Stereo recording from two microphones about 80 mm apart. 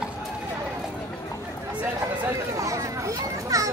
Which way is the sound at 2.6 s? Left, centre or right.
Right.